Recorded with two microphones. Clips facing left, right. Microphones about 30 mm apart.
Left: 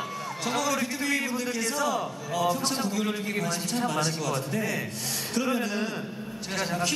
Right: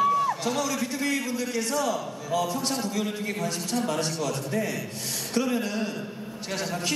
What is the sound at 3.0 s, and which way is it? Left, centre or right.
A man's voice, centre.